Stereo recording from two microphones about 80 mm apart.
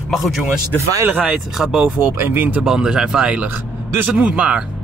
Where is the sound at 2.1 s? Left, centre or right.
Right.